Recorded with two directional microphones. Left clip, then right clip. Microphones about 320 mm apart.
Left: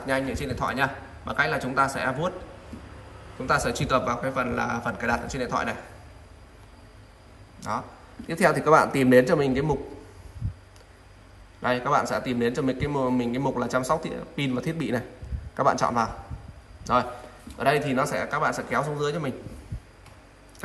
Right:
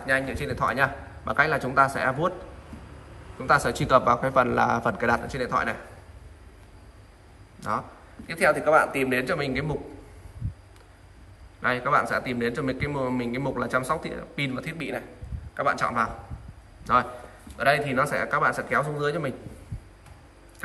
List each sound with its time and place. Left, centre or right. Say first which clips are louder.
0.0 s a man's voice: right 2 dB; centre
3.3 s a man's voice: right 2 dB; centre
8.3 s speech: left 1 dB; centre
11.6 s a man's voice: even; centre